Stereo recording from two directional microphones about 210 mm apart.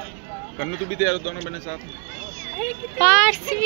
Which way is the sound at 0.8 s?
60° left (ahead or behind).